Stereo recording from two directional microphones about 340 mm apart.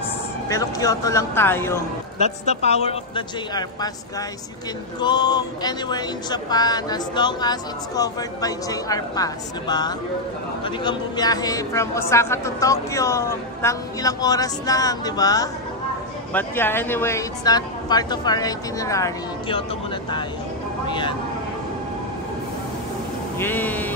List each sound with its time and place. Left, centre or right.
0.5 s speech: centre
2.1 s speech: centre
5.0 s speech: centre
23.4 s speech: centre